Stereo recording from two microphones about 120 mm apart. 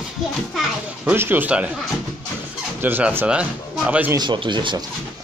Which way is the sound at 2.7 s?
15° right (ahead or behind).